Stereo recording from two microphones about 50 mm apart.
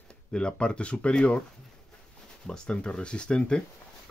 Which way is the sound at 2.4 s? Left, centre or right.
Centre.